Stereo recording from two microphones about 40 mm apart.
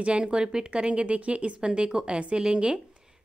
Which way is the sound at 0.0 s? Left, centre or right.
Right.